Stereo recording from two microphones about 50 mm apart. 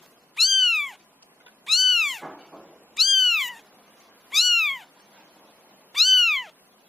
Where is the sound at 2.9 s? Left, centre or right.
Centre.